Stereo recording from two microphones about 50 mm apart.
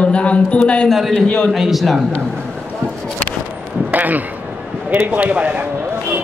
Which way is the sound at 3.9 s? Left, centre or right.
Right.